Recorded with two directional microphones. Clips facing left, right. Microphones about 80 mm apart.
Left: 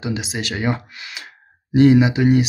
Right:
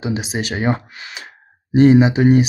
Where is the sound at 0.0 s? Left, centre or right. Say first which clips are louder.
Right 3 dB; right.